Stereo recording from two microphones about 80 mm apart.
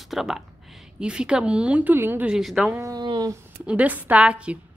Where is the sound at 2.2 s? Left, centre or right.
Centre.